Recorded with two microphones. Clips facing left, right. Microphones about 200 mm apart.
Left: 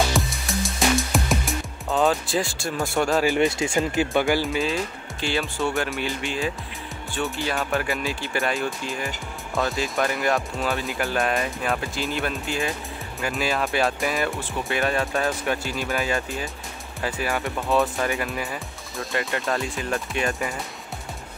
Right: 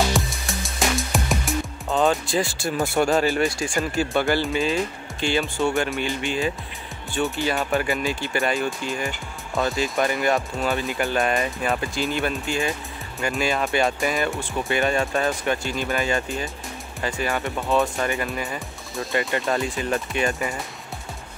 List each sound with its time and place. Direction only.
0.1 s music: centre (ahead or behind)
3.3 s speech: 20° left (ahead or behind)
4.5 s speech: centre (ahead or behind)